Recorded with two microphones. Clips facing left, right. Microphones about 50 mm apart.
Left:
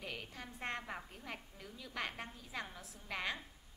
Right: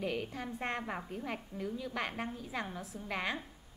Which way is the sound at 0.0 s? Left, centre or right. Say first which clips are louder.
Right 10 dB; centre.